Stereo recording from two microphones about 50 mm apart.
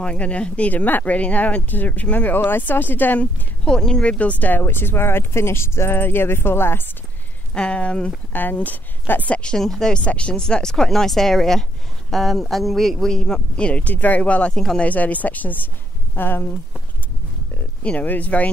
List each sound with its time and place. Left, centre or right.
0.0 s speech: left
3.6 s speech: centre; by 5.9 s left
5.9 s speech: left
7.5 s speech: left
8.3 s speech: left
9.3 s speech: left
9.6 s speech: centre
9.9 s speech: left
10.4 s speech: centre
13.6 s speech: left
14.5 s speech: centre
14.8 s speech: left
17.8 s speech: left